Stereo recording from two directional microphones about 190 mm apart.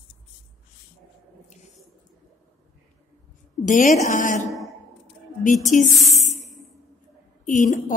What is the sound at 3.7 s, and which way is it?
Speech, 40° left (ahead or behind).